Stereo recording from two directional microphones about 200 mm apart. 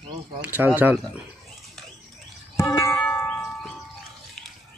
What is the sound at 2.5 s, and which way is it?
Church bell, 15° left (ahead or behind).